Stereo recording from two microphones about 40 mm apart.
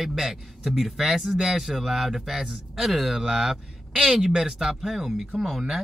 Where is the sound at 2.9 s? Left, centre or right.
Centre.